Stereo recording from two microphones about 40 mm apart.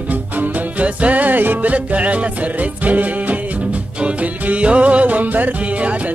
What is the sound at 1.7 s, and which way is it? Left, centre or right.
Music, right.